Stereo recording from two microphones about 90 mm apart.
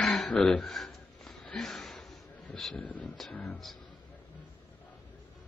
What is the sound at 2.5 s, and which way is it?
Speech, 5° left (ahead or behind).